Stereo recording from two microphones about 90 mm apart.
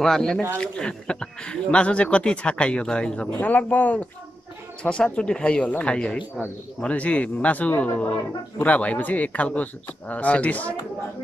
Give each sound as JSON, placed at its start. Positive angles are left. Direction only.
{"t": 0.0, "sound": "speech", "side_deg": 5}